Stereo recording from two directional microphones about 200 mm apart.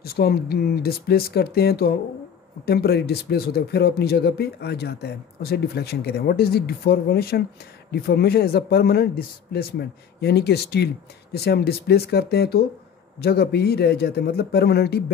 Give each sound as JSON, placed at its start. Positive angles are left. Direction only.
{"t": 0.0, "sound": "speech", "side_deg": 50}